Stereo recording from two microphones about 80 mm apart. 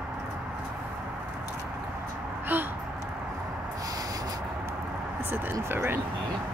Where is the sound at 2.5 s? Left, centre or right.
Right.